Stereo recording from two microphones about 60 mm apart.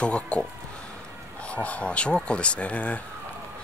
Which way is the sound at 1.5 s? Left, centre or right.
Left.